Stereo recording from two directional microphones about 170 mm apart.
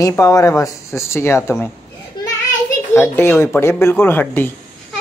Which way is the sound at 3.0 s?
15° left (ahead or behind).